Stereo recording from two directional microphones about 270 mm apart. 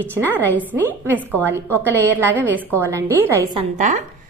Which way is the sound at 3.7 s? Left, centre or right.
Right.